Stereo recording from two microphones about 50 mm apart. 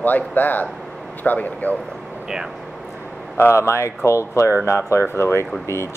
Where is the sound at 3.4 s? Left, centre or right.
Left.